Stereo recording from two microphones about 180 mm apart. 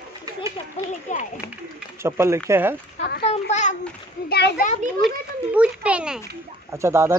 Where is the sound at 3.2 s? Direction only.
40° left (ahead or behind).